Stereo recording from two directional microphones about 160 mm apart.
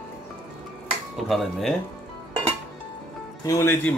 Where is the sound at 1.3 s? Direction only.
Centre (ahead or behind).